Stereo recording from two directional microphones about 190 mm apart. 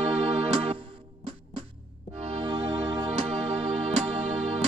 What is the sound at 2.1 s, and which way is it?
Music, 30° right (ahead or behind).